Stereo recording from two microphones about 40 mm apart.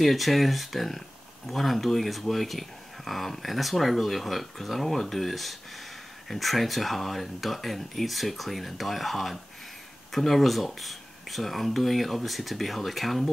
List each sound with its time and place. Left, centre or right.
0.0 s speech: centre